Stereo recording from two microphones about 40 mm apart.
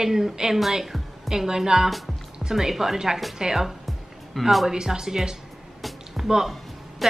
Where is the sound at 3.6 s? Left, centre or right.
Centre.